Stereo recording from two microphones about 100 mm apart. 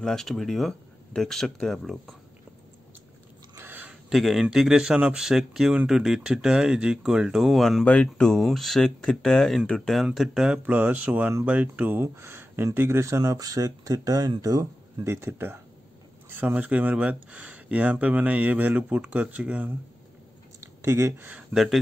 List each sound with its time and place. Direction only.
0.0 s speech: 5° left (ahead or behind)
3.5 s a sound: 20° right (ahead or behind)
4.1 s speech: centre (ahead or behind)
7.8 s speech: 10° left (ahead or behind); by 14.7 s 40° right (ahead or behind)
15.0 s speech: 25° right (ahead or behind)
20.6 s speech: 30° right (ahead or behind)